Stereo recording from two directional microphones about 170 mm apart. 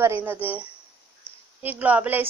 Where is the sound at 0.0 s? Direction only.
15° right (ahead or behind).